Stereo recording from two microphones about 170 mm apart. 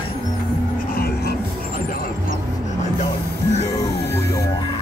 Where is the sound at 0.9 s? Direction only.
65° left (ahead or behind).